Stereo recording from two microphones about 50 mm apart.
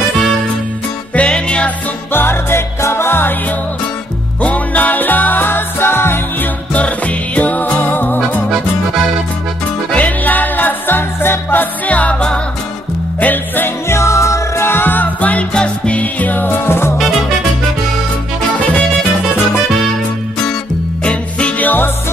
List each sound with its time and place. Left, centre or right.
1.1 s music: left
2.1 s music: left
4.4 s music: left
6.7 s music: left
9.9 s music: left
11.9 s music: left
13.2 s music: left
13.8 s music: left
14.6 s music: left
15.1 s music: left
15.5 s music: centre; by 17.0 s left
21.0 s music: left